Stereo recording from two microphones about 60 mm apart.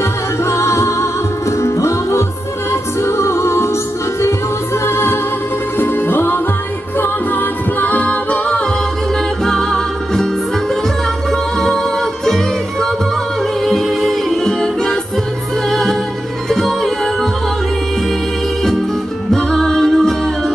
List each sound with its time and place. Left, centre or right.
0.5 s music: left
4.8 s music: left; by 8.6 s centre
9.4 s music: centre
11.6 s music: centre
13.7 s music: centre
19.3 s music: centre